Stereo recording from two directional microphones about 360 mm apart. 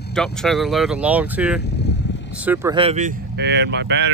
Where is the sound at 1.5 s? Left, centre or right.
Left.